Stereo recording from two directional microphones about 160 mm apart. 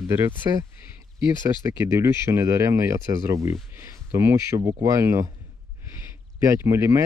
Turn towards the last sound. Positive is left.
turn(degrees=-15)  # may be behind; listen again after turning